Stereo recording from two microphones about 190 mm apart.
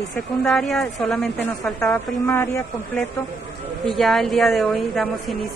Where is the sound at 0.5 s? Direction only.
Centre (ahead or behind).